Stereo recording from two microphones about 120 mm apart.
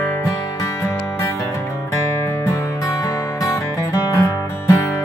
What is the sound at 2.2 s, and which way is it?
Music, 25° left (ahead or behind).